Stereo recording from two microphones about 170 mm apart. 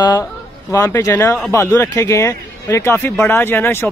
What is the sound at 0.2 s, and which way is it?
Speech, 15° left (ahead or behind).